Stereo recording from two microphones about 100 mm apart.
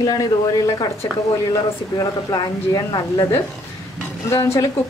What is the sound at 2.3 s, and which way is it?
Speech, 45° left (ahead or behind).